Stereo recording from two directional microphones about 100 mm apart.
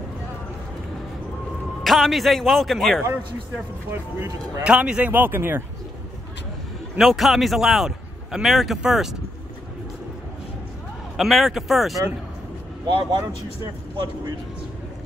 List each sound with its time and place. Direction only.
1.8 s a man's voice: centre (ahead or behind)
3.1 s a man's voice: 25° right (ahead or behind)
4.6 s speech: 10° right (ahead or behind)
7.0 s a man's voice: centre (ahead or behind)
11.1 s a man's voice: centre (ahead or behind)
12.8 s speech: 50° right (ahead or behind)